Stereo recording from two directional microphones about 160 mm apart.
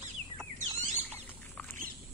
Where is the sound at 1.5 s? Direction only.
10° left (ahead or behind).